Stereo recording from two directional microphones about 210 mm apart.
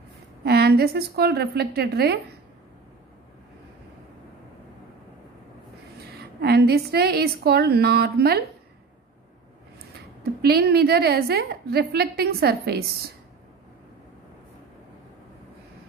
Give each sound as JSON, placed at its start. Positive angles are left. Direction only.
{"t": 0.4, "sound": "a woman's voice", "side_deg": -50}
{"t": 5.9, "sound": "a woman's voice", "side_deg": -50}
{"t": 10.4, "sound": "a woman's voice", "side_deg": -50}